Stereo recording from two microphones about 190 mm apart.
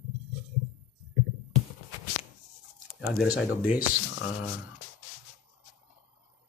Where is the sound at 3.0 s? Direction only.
5° right (ahead or behind).